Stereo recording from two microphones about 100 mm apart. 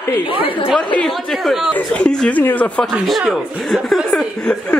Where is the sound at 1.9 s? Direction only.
10° left (ahead or behind).